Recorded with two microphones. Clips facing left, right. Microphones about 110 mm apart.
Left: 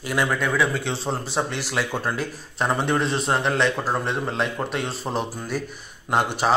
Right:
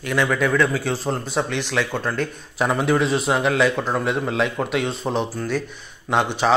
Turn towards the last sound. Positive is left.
turn(degrees=5)  # may be behind; listen again after turning